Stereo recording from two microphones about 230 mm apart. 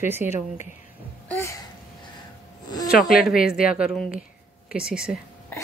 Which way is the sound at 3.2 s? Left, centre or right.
Left.